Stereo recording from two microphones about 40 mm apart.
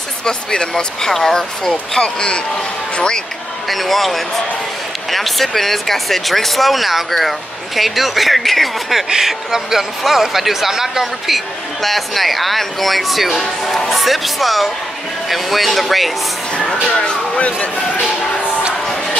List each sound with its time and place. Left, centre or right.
0.2 s speech: centre
1.7 s speech: left
3.6 s speech: centre
9.1 s speech: centre
16.9 s speech: left